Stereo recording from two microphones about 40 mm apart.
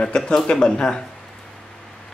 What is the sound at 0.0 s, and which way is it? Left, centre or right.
Speech, centre.